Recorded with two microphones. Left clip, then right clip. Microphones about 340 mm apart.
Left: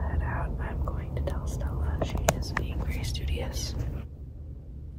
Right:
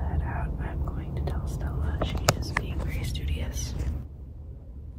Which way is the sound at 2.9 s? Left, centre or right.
Centre.